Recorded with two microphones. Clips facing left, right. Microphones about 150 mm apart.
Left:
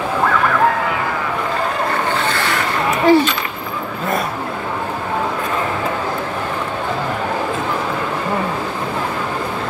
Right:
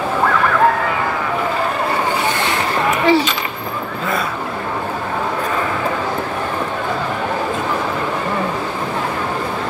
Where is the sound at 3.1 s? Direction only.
50° left (ahead or behind).